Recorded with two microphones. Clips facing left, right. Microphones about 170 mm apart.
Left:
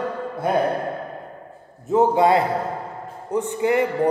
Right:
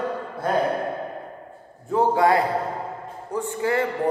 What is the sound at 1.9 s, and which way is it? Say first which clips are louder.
A man's voice: left 3 dB; 20° left (ahead or behind).